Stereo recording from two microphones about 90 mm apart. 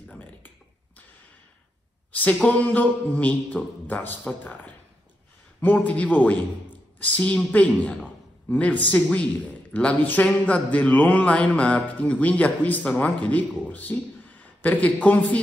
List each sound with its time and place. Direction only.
0.1 s computer keyboard: 20° left (ahead or behind)
2.1 s music: 15° left (ahead or behind)
14.4 s speech: 15° left (ahead or behind)